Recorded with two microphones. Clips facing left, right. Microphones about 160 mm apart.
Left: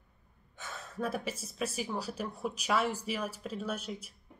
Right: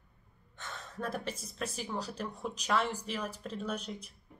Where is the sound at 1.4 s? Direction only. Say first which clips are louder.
Left 3 dB; 5° left (ahead or behind).